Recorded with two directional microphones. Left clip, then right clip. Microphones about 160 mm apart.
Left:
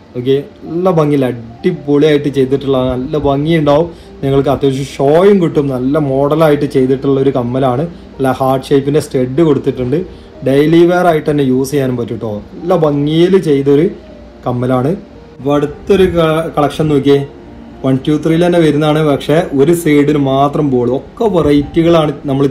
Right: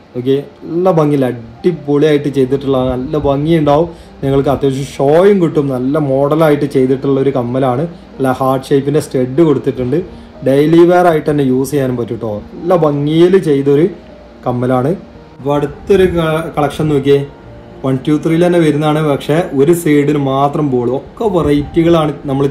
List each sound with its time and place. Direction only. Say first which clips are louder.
0.8 s speech: even; 10° right (ahead or behind)